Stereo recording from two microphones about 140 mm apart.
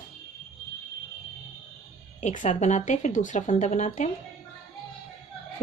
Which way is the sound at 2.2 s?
60° left (ahead or behind).